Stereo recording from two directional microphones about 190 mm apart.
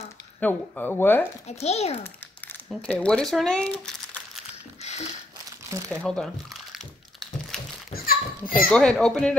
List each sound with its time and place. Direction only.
0.4 s speech: 10° left (ahead or behind)
1.5 s a child's voice: 35° left (ahead or behind)
2.7 s speech: 5° left (ahead or behind)
5.9 s crumpling: 5° left (ahead or behind)
7.9 s children playing: 50° left (ahead or behind)
8.6 s speech: 5° left (ahead or behind)